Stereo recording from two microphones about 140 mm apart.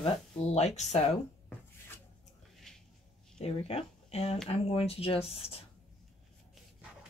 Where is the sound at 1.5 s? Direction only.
15° left (ahead or behind).